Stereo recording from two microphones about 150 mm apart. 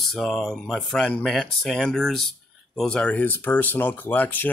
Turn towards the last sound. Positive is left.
turn(degrees=10)  # may be behind; listen again after turning